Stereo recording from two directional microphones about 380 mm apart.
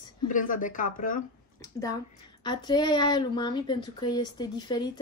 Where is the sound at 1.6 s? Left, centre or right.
Centre.